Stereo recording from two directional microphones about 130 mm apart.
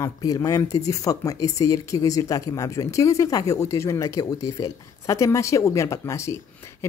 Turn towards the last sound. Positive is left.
turn(degrees=20)  # may be behind; listen again after turning